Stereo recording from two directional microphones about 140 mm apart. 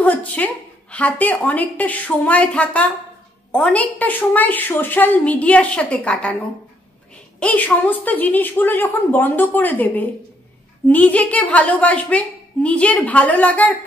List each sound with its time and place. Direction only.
0.0 s a woman's voice: 10° left (ahead or behind)
7.3 s a woman's voice: 10° left (ahead or behind)